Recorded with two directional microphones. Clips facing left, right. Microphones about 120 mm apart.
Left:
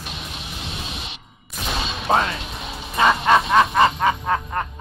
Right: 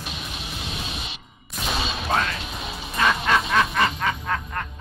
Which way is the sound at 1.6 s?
Centre (ahead or behind).